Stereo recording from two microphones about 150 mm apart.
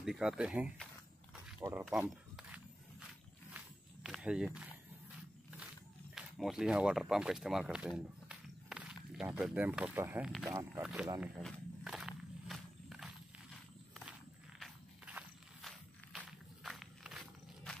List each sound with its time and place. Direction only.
0.0 s speech: 5° right (ahead or behind)
1.9 s a sound: 5° right (ahead or behind)
3.5 s walk: 5° right (ahead or behind)
6.1 s speech: 5° right (ahead or behind)
8.3 s walk: 5° right (ahead or behind)
10.5 s speech: 15° right (ahead or behind)
10.8 s speech: 5° right (ahead or behind)
11.4 s walk: 5° right (ahead or behind)
14.6 s walk: 10° right (ahead or behind)